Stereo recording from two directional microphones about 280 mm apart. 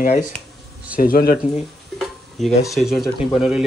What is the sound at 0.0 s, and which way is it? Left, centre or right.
Speech, left.